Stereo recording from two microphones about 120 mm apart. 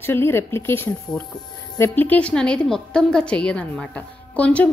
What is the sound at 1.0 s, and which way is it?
A woman's voice, 5° left (ahead or behind).